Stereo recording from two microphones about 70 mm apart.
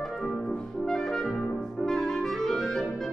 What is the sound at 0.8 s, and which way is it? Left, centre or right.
Clarinet, centre.